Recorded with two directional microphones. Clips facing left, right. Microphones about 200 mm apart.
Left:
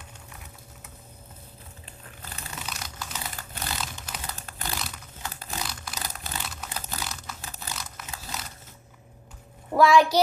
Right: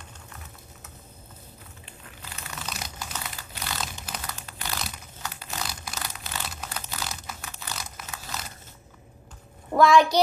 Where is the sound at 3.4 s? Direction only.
50° left (ahead or behind).